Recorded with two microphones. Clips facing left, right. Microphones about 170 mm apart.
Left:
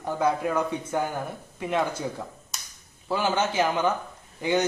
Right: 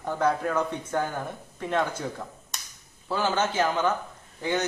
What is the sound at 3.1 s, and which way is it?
Speech, 15° left (ahead or behind).